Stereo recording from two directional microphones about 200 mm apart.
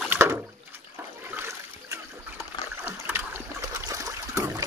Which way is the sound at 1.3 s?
10° right (ahead or behind).